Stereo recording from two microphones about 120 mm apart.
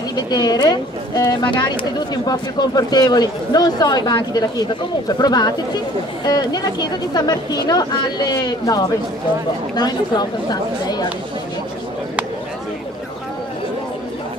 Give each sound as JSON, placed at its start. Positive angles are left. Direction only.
{"t": 0.1, "sound": "speech", "side_deg": 35}